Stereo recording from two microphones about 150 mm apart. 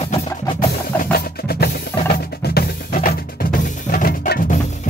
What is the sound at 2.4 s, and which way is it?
Drum, 90° left.